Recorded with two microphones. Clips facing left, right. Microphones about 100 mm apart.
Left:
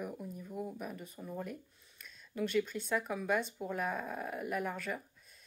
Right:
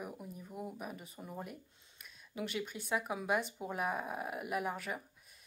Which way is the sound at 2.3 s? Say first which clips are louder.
Left 6 dB; 10° right (ahead or behind).